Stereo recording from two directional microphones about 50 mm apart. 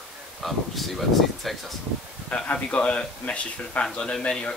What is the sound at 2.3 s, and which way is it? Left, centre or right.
A man's voice, left.